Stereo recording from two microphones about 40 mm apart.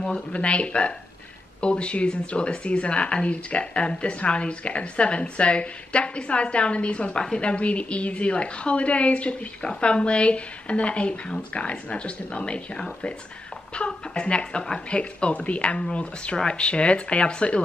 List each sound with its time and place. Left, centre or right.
0.3 s a woman's voice: left